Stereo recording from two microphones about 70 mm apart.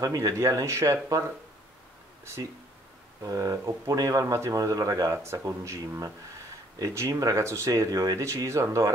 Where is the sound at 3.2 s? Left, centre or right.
Right.